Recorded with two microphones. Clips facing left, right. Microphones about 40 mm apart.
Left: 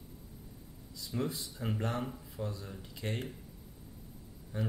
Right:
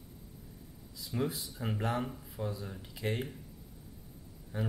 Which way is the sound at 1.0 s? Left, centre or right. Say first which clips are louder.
Right 1 dB; centre.